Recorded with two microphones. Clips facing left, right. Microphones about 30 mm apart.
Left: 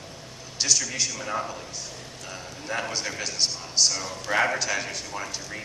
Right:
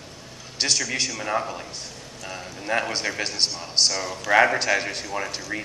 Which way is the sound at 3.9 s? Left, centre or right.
Right.